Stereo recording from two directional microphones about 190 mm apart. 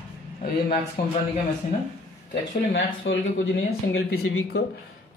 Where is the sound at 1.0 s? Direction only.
55° left (ahead or behind).